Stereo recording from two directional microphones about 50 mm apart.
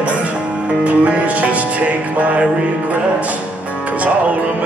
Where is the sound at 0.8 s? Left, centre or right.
Right.